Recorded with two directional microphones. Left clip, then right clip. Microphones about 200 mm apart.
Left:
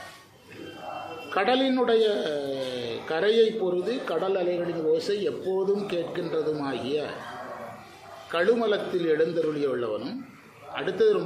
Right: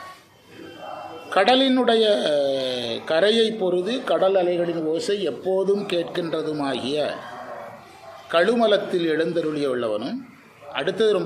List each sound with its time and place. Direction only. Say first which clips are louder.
1.3 s a man's voice: right 6 dB; 40° right (ahead or behind)
8.3 s a man's voice: right 5 dB; 40° right (ahead or behind)